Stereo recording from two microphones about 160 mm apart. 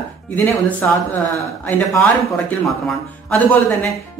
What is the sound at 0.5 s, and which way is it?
Speech, 10° left (ahead or behind).